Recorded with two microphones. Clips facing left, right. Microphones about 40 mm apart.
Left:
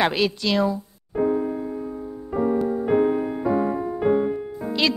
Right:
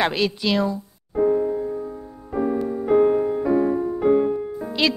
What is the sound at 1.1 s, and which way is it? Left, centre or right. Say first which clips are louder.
Music: right 3 dB; centre.